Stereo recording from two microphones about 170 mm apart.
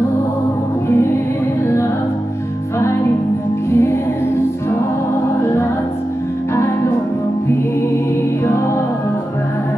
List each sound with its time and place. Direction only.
2.8 s music: 15° left (ahead or behind)